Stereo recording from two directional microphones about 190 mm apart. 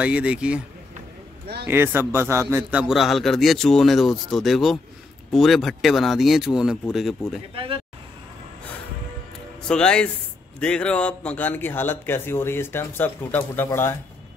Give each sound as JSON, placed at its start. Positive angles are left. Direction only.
{"t": 0.0, "sound": "a man's voice", "side_deg": -5}
{"t": 1.7, "sound": "a man's voice", "side_deg": -10}
{"t": 7.5, "sound": "speech", "side_deg": -25}
{"t": 9.7, "sound": "a man's voice", "side_deg": 5}